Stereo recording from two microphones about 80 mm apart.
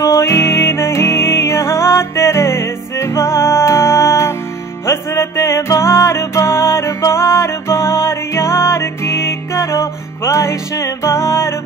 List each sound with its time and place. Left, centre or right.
0.0 s music: left